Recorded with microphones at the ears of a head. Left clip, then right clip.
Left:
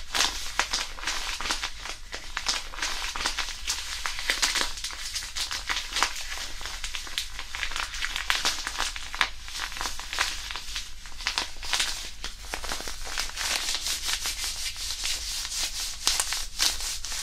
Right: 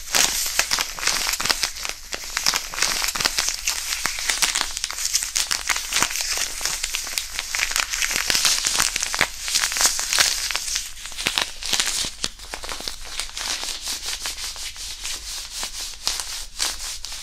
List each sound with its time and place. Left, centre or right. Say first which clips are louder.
0.1 s crumpling: right 6 dB; right